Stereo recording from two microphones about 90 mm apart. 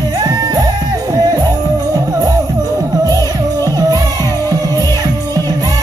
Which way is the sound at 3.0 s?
45° right (ahead or behind).